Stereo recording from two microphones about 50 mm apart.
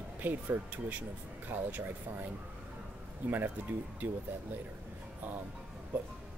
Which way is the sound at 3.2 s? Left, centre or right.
Right.